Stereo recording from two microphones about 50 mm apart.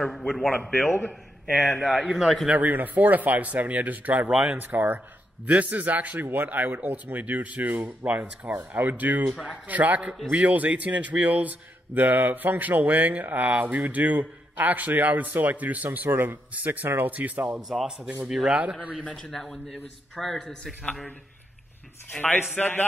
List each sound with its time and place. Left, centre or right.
0.1 s a man's voice: centre
1.5 s a man's voice: centre
2.5 s speech: right
16.5 s speech: right
16.8 s speech: right
17.1 s speech: right
17.6 s a man's voice: centre
17.8 s a man's voice: centre
19.2 s a man's voice: centre
22.6 s speech: left